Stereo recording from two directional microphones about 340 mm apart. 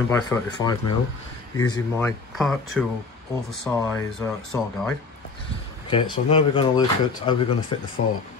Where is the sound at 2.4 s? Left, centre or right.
Centre.